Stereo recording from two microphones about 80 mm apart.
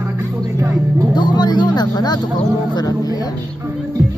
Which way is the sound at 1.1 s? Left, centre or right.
Left.